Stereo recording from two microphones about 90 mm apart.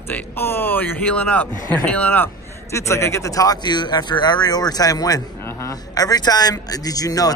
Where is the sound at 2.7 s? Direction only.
30° left (ahead or behind).